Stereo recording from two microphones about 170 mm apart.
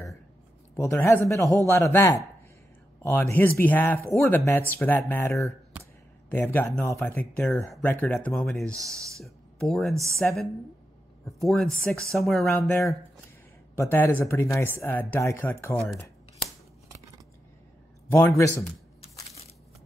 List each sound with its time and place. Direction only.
0.7 s speech: 15° left (ahead or behind)
6.3 s speech: 15° left (ahead or behind)
12.4 s speech: 15° left (ahead or behind)
18.1 s speech: 10° left (ahead or behind)